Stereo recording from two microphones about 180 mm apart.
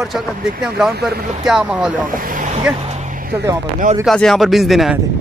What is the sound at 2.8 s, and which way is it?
Vehicle, 40° right (ahead or behind).